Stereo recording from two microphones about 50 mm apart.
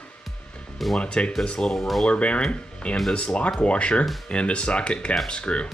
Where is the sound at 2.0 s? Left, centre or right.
Left.